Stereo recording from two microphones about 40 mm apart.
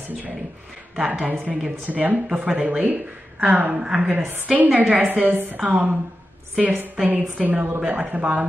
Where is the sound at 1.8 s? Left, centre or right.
Right.